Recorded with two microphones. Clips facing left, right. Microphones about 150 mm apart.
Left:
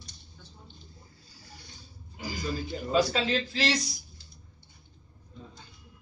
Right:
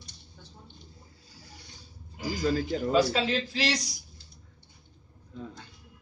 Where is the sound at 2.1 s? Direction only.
85° right.